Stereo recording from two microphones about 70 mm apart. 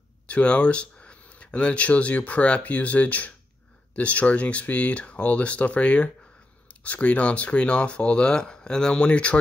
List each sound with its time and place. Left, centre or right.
0.3 s speech: centre